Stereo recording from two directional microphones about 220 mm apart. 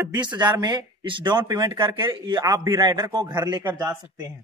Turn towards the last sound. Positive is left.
turn(degrees=-20)  # may be behind; listen again after turning